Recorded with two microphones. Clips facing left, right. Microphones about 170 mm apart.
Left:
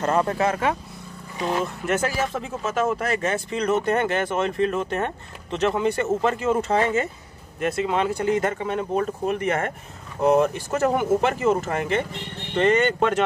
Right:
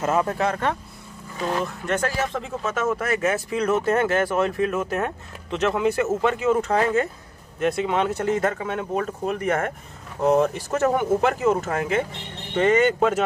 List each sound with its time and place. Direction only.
0.0 s speech: 5° right (ahead or behind)